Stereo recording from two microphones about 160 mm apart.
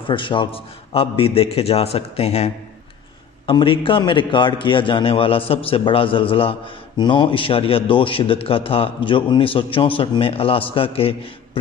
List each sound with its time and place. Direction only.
0.1 s a man's voice: 30° left (ahead or behind)